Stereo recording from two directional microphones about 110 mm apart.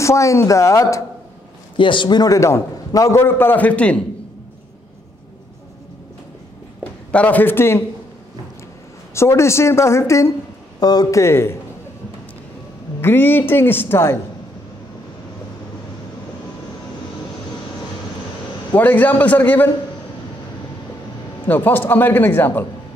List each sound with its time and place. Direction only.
0.0 s a man's voice: 25° left (ahead or behind)
1.8 s a man's voice: 45° left (ahead or behind); by 4.0 s 10° left (ahead or behind)
6.8 s speech: 10° left (ahead or behind)
9.1 s a man's voice: 25° left (ahead or behind)
10.8 s a man's voice: 35° left (ahead or behind)
13.0 s a man's voice: 20° left (ahead or behind)
18.8 s a man's voice: 15° left (ahead or behind)
21.5 s a man's voice: 15° left (ahead or behind)